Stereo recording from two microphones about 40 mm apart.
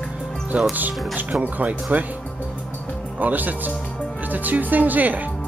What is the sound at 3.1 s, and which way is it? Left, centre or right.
Speech, right.